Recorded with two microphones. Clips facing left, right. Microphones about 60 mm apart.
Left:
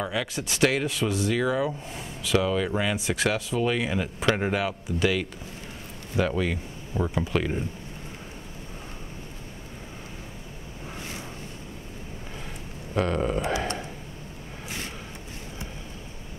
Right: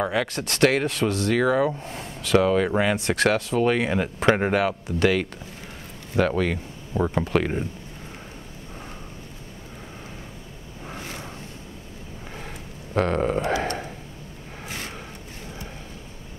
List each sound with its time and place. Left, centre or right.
0.0 s speech: right
10.9 s vehicle: right
12.9 s a sound: right